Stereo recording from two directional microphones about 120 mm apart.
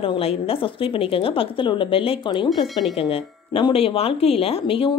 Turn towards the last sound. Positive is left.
turn(degrees=50)  # may be behind; listen again after turning